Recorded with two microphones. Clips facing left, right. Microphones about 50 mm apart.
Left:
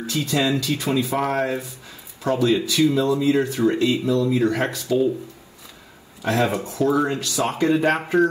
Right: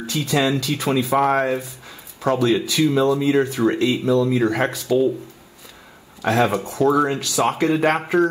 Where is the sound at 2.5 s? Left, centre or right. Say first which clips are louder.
Even; right.